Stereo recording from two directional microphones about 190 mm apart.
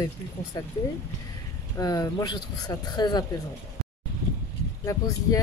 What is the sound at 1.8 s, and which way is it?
Speech, 20° left (ahead or behind).